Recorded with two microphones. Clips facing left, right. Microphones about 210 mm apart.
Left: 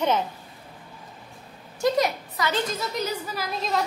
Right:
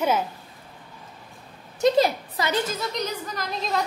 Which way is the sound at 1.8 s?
25° right (ahead or behind).